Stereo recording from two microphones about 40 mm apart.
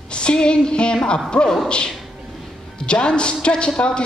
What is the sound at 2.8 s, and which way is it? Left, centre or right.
A man's voice, left.